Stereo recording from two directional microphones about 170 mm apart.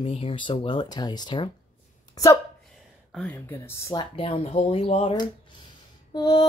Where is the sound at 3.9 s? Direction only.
35° left (ahead or behind).